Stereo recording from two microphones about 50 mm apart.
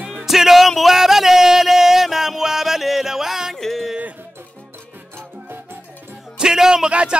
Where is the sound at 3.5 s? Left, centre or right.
Centre.